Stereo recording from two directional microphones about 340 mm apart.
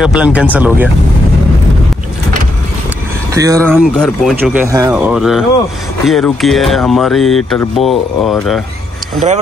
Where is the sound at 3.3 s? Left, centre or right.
Centre.